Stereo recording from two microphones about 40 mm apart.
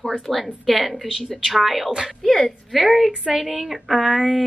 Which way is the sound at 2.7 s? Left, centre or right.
Centre.